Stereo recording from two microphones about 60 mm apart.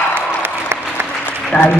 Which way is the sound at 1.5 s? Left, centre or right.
Left.